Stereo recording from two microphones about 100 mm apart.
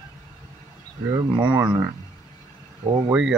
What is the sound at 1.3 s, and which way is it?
Speech, 45° right (ahead or behind).